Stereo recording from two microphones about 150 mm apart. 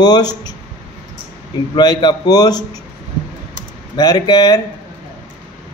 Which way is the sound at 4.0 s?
25° left (ahead or behind).